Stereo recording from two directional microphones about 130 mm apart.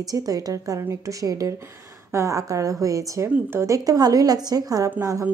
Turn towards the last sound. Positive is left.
turn(degrees=-25)  # may be behind; listen again after turning